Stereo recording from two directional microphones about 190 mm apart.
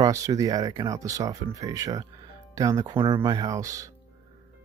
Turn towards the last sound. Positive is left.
turn(degrees=-15)  # may be behind; listen again after turning